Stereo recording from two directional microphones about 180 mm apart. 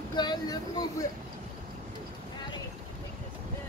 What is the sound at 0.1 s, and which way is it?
Speech, 25° left (ahead or behind).